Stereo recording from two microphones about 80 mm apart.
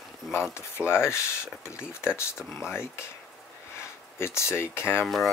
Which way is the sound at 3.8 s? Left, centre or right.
Left.